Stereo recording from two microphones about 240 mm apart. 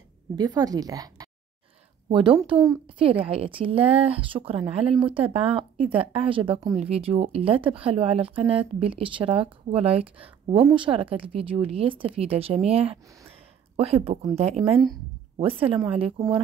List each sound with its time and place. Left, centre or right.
0.4 s a woman's voice: centre